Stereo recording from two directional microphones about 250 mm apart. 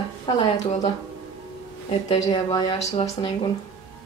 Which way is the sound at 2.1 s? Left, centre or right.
Centre.